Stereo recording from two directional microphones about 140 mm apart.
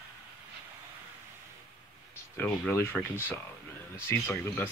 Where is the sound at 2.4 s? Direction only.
15° left (ahead or behind).